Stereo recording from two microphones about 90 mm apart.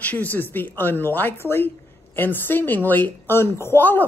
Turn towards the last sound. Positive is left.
turn(degrees=20)  # may be behind; listen again after turning